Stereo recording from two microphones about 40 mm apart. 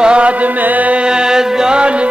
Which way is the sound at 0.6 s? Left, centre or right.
Right.